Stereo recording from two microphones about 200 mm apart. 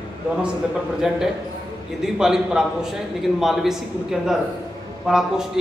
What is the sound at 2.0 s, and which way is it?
A man's voice, centre (ahead or behind).